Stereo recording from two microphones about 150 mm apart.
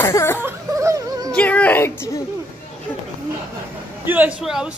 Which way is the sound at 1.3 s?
10° left (ahead or behind).